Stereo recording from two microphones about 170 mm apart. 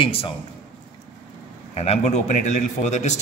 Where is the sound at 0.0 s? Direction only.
35° left (ahead or behind).